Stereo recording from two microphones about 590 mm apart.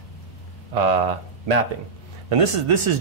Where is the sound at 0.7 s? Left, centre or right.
Right.